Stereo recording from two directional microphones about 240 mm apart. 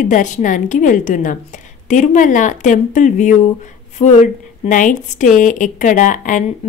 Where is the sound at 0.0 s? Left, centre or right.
Left.